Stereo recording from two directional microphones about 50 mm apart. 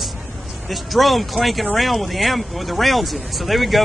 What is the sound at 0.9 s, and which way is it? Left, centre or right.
Speech, centre.